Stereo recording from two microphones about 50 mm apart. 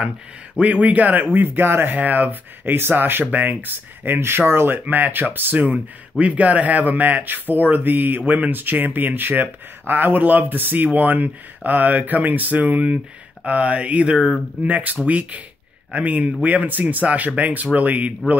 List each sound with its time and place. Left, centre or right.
0.6 s speech: right
2.0 s speech: right
4.7 s speech: right